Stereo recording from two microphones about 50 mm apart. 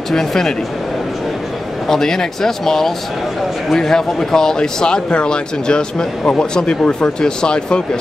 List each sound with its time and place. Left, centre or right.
0.1 s speech: centre
1.9 s speech: centre